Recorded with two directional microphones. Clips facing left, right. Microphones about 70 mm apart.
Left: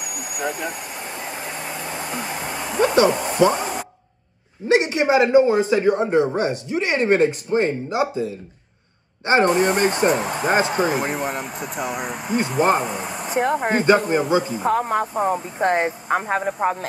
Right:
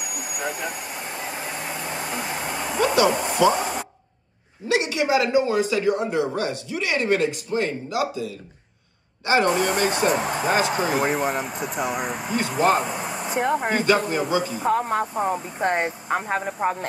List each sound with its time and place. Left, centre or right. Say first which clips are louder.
0.0 s vehicle: left 2 dB; centre
3.4 s a man's voice: left 2 dB; left
4.6 s a man's voice: left 4 dB; left
10.2 s speech: left 2 dB; centre
12.4 s speech: left 2 dB; left
12.8 s a sound: left 1 dB; centre
13.7 s speech: left 4 dB; left
14.6 s speech: left 2 dB; centre